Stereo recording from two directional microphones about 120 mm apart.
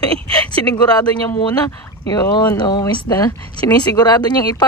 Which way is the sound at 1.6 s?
25° left (ahead or behind).